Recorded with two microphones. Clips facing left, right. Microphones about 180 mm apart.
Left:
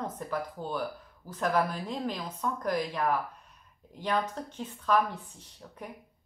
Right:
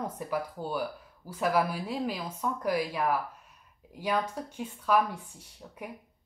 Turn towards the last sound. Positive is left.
turn(degrees=-10)  # may be behind; listen again after turning